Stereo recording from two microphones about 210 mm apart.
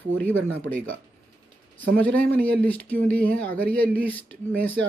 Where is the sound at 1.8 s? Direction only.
10° left (ahead or behind).